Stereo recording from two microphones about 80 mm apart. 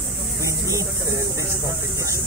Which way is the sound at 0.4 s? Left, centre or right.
Right.